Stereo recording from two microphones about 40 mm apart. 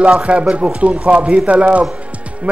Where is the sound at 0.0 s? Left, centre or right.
Right.